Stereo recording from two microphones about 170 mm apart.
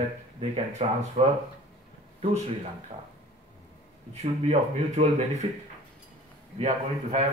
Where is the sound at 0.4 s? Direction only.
30° right (ahead or behind).